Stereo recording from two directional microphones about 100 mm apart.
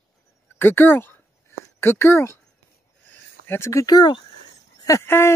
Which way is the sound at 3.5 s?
30° left (ahead or behind).